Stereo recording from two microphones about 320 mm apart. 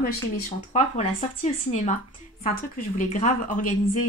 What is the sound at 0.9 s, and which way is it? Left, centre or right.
Speech, left.